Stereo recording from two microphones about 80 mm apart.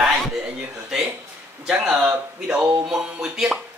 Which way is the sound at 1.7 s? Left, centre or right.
Centre.